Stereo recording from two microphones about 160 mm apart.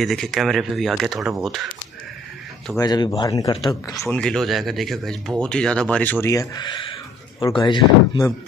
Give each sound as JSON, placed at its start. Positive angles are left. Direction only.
{"t": 0.0, "sound": "speech", "side_deg": 0}
{"t": 2.8, "sound": "speech", "side_deg": 25}
{"t": 4.1, "sound": "speech", "side_deg": 5}
{"t": 6.2, "sound": "a sound", "side_deg": 25}
{"t": 7.4, "sound": "speech", "side_deg": 30}